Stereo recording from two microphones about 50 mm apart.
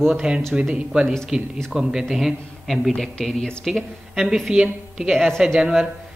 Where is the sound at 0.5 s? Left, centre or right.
Centre.